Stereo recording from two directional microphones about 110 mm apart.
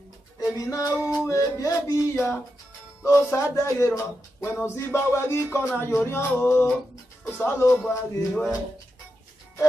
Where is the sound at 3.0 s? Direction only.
25° left (ahead or behind).